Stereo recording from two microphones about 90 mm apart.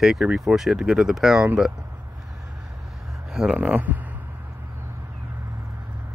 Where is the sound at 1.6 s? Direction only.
5° right (ahead or behind).